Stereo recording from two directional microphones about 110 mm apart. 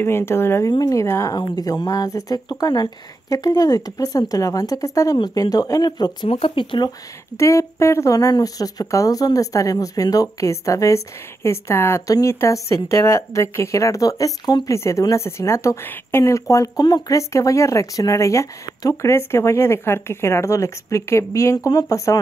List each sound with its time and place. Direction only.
0.0 s speech: 20° left (ahead or behind); by 6.1 s 40° left (ahead or behind)
6.4 s speech: 50° left (ahead or behind)
7.3 s speech: 25° left (ahead or behind)